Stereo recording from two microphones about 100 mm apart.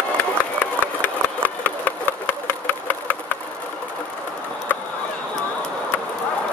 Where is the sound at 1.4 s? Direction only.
15° left (ahead or behind).